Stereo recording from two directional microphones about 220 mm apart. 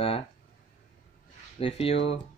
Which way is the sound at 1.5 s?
25° left (ahead or behind).